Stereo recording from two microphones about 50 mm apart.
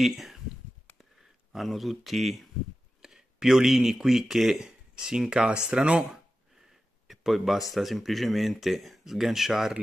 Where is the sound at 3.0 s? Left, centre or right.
Centre.